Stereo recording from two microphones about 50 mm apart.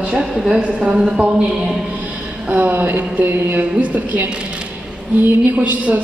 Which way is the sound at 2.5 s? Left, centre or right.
Right.